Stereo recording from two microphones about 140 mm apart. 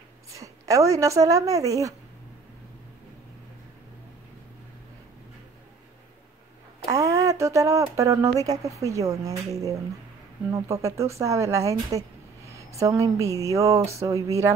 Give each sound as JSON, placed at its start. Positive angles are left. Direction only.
{"t": 0.3, "sound": "a woman's voice", "side_deg": -25}
{"t": 6.9, "sound": "speech", "side_deg": -25}